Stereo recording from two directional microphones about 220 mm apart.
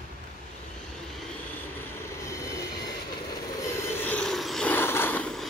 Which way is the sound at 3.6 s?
10° left (ahead or behind).